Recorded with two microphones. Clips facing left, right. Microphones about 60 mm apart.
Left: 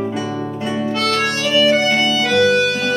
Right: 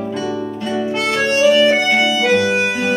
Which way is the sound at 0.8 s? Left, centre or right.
Centre.